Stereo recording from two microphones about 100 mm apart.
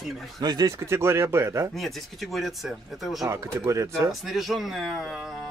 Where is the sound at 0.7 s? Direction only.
30° right (ahead or behind).